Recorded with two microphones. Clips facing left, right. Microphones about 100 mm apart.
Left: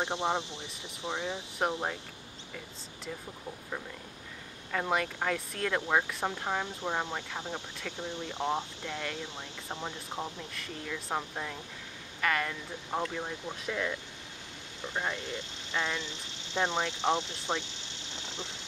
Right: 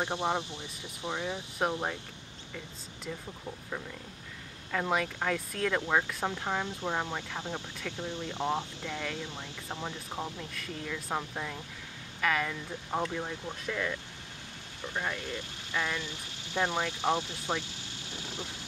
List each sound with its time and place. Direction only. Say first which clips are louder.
0.0 s speech: even; 20° left (ahead or behind)
1.6 s speech: even; centre (ahead or behind)
4.7 s speech: even; centre (ahead or behind)
10.5 s speech: right 1 dB; centre (ahead or behind)
13.2 s speech: even; 10° left (ahead or behind)